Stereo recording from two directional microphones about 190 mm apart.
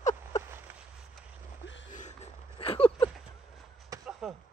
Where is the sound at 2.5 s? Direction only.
30° left (ahead or behind).